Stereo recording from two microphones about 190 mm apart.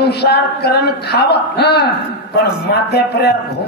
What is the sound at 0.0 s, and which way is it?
A man's voice, 60° left (ahead or behind).